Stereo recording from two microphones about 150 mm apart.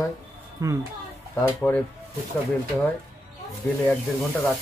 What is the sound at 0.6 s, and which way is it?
Speech, 25° right (ahead or behind).